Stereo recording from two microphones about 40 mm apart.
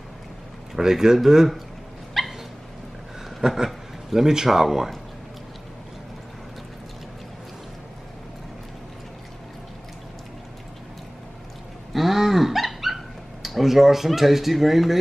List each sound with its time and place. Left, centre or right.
0.7 s speech: centre
2.2 s dog: centre
3.3 s speech: centre
11.9 s dog: centre